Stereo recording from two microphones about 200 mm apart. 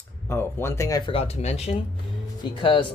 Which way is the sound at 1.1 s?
30° left (ahead or behind).